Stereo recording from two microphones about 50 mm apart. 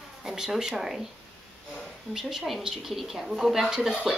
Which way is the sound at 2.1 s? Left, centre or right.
Centre.